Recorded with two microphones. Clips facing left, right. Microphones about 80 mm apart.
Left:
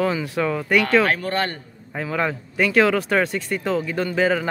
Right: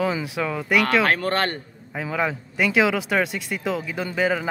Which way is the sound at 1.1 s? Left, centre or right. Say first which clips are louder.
Right 1 dB; right.